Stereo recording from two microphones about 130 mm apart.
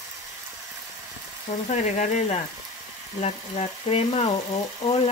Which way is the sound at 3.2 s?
55° left (ahead or behind).